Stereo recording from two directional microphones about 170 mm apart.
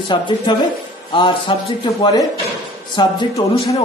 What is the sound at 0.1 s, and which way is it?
A man's voice, 25° left (ahead or behind).